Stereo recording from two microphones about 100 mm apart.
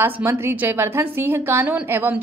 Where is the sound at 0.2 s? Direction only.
25° right (ahead or behind).